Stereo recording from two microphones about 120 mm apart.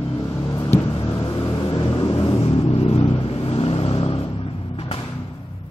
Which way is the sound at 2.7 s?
55° left (ahead or behind).